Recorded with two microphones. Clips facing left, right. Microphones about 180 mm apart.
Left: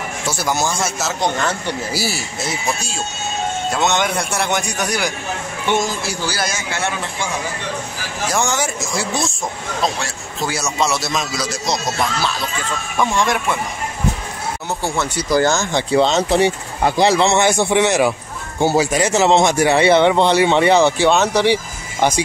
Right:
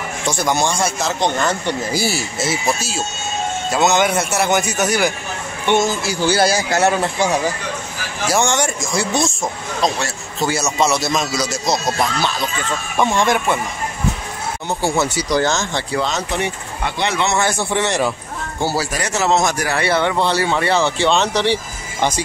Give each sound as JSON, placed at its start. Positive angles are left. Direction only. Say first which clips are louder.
{"t": 0.3, "sound": "a man's voice", "louder": "right 2 dB", "side_deg": 5}
{"t": 6.2, "sound": "a man's voice", "louder": "right 11 dB", "side_deg": -30}
{"t": 8.3, "sound": "a man's voice", "louder": "right 3 dB", "side_deg": 0}
{"t": 15.0, "sound": "a man's voice", "louder": "right 2 dB", "side_deg": -5}
{"t": 15.3, "sound": "a man's voice", "louder": "left 3 dB", "side_deg": 10}
{"t": 15.9, "sound": "speech", "louder": "left 8 dB", "side_deg": 25}
{"t": 17.5, "sound": "a man's voice", "louder": "left 4 dB", "side_deg": 15}